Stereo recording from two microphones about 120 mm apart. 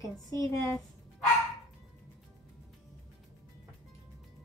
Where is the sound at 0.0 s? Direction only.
30° left (ahead or behind).